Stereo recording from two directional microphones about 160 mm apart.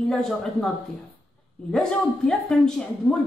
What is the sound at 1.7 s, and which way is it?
A woman's voice, 5° left (ahead or behind).